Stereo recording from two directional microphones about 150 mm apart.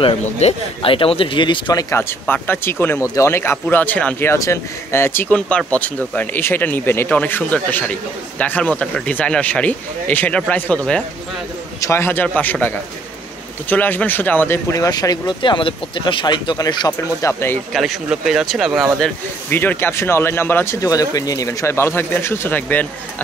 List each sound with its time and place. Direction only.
0.0 s speech: 40° left (ahead or behind); by 11.1 s 5° left (ahead or behind)
11.8 s speech: 15° left (ahead or behind)
17.7 s speech: centre (ahead or behind)
19.5 s speech: 15° left (ahead or behind)